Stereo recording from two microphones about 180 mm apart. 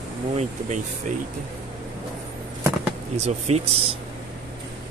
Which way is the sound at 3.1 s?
35° right (ahead or behind).